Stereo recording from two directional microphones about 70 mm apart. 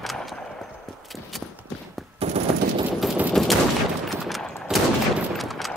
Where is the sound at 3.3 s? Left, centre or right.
Centre.